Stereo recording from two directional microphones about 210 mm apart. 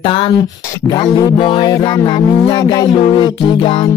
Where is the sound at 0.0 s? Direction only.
25° left (ahead or behind).